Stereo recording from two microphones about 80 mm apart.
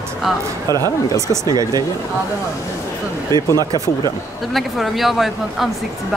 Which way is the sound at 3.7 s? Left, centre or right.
Right.